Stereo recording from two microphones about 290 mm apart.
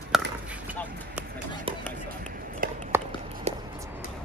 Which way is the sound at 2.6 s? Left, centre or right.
Right.